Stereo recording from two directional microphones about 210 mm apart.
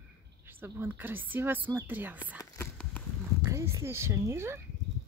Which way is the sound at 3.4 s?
15° right (ahead or behind).